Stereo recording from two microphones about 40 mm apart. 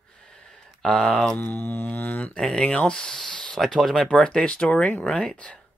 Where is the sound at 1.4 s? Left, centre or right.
Left.